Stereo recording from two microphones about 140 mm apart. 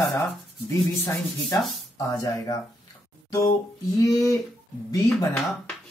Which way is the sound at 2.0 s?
25° left (ahead or behind).